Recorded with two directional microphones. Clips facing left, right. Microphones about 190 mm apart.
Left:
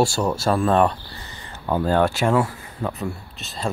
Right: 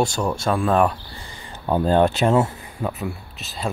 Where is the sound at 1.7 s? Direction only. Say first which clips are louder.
Right 2 dB; 20° right (ahead or behind).